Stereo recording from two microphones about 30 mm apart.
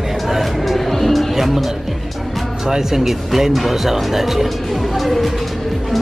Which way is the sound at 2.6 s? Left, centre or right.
Right.